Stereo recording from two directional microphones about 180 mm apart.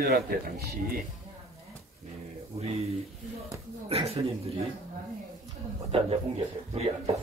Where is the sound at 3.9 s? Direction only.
35° right (ahead or behind).